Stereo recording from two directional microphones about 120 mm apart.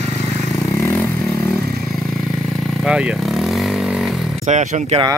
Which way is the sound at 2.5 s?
Centre (ahead or behind).